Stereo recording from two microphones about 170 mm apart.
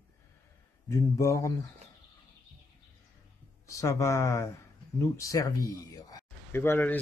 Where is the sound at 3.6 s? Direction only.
20° left (ahead or behind).